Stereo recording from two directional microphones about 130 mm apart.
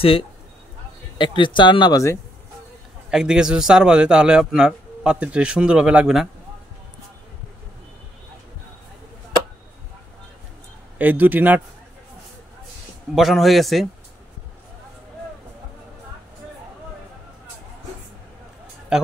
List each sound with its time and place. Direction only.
0.0 s speech: 45° left (ahead or behind); by 2.1 s 30° left (ahead or behind)
3.1 s a man's voice: 5° right (ahead or behind)
11.0 s a man's voice: 15° right (ahead or behind)
13.1 s a man's voice: centre (ahead or behind)